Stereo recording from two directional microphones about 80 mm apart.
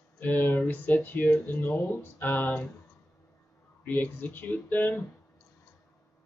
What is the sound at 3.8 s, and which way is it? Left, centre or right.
Speech, left.